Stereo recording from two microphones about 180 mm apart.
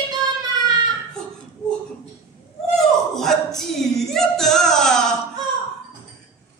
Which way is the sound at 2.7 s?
Centre (ahead or behind).